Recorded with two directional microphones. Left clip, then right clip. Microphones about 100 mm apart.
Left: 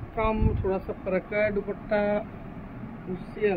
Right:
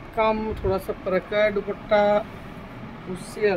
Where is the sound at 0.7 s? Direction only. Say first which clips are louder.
Right 5 dB; 55° right (ahead or behind).